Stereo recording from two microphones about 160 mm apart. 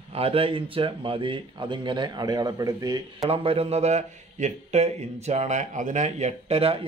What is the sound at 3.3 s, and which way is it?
A man's voice, 35° right (ahead or behind).